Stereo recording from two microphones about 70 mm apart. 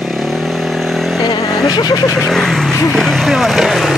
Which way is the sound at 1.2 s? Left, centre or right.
Left.